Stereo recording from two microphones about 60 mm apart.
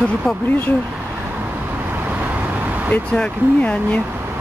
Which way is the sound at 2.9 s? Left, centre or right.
Left.